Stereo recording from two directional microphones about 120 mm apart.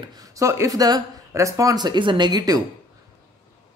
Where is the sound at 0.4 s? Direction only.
25° right (ahead or behind).